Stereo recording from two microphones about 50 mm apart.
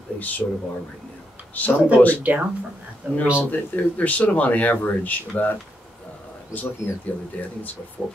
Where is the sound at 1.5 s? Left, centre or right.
Left.